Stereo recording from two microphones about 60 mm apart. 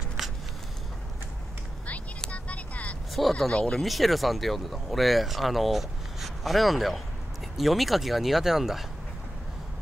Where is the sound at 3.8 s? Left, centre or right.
Centre.